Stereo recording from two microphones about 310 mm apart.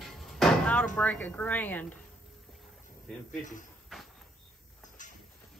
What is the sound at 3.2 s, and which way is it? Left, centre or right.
Speech, left.